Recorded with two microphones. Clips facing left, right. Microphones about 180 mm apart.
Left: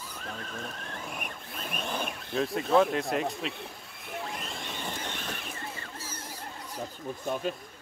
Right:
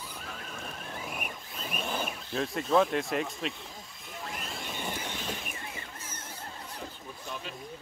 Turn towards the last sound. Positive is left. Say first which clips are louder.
# left 10 dB
turn(degrees=45)  # may be behind; listen again after turning